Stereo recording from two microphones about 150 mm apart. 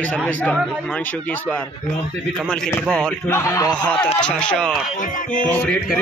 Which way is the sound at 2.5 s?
10° left (ahead or behind).